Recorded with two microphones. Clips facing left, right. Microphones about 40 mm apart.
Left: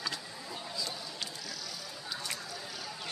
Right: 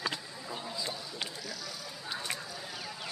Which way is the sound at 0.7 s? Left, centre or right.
Right.